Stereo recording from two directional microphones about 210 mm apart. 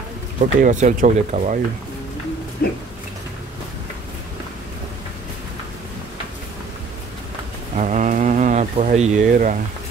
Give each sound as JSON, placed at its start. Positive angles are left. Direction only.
{"t": 0.6, "sound": "speech", "side_deg": -35}
{"t": 2.6, "sound": "a sound", "side_deg": 45}
{"t": 7.7, "sound": "speech", "side_deg": -35}